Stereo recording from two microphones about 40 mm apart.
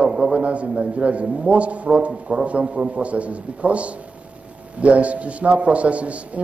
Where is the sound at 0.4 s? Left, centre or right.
Right.